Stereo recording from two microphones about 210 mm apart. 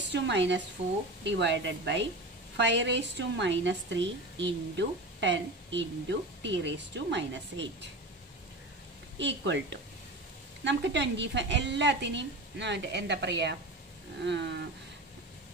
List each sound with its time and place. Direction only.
0.1 s a woman's voice: 55° right (ahead or behind)
9.2 s a woman's voice: 60° right (ahead or behind)